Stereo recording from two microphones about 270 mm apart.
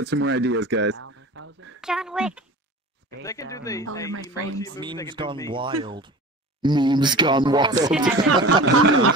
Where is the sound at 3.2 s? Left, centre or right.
Centre.